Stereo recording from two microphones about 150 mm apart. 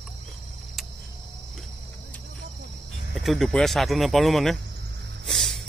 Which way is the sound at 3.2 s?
Centre (ahead or behind).